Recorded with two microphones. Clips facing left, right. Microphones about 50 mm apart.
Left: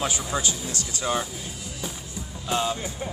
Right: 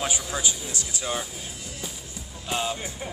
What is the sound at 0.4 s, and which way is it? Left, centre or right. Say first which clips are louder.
Speech: left 1 dB; centre.